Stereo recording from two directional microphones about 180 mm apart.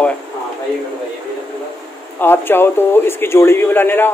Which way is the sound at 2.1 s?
10° left (ahead or behind).